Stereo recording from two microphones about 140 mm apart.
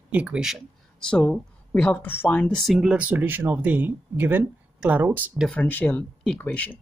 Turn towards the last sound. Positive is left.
turn(degrees=10)  # may be behind; listen again after turning